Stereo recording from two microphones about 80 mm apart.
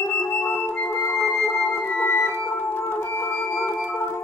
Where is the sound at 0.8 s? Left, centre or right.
Left.